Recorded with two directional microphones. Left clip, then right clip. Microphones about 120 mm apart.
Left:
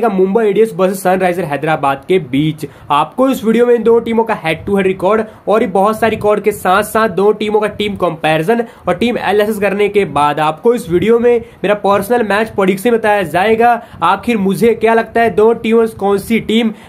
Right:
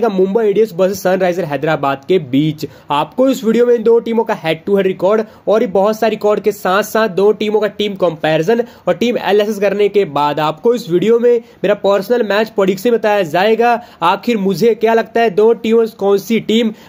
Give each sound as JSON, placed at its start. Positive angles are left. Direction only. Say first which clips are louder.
{"t": 0.0, "sound": "a man's voice", "louder": "left 1 dB", "side_deg": -30}